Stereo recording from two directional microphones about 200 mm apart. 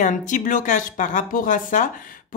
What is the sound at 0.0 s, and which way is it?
Speech, 40° left (ahead or behind).